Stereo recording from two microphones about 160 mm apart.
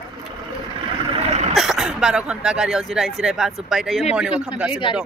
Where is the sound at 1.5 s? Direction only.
Centre (ahead or behind).